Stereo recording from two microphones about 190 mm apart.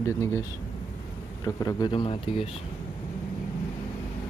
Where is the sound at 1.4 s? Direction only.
20° left (ahead or behind).